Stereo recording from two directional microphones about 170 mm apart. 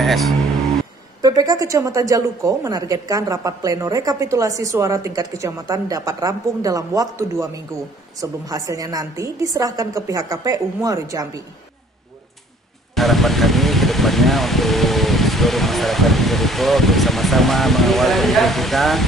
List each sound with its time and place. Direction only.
0.0 s speech: centre (ahead or behind)
1.2 s a woman's voice: 20° right (ahead or behind)
12.9 s speech: centre (ahead or behind)